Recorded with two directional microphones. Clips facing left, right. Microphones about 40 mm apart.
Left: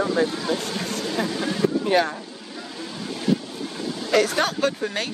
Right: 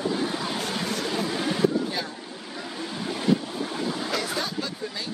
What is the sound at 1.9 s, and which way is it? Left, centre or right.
Speech, left.